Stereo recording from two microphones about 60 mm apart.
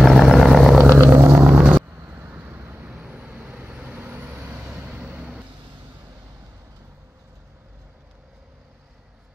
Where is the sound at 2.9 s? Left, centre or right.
Centre.